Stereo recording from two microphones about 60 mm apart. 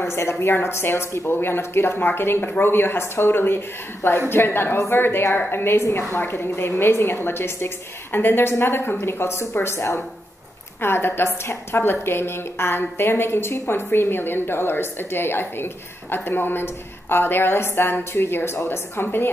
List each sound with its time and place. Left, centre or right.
0.0 s a woman's voice: left